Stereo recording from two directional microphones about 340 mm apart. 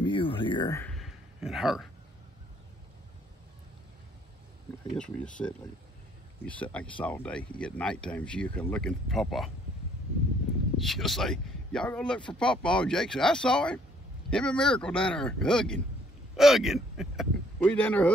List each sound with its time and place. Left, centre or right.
0.0 s a sound: centre
4.9 s speech: centre
10.8 s speech: centre